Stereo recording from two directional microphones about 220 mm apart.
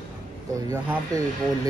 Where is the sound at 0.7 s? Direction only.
15° right (ahead or behind).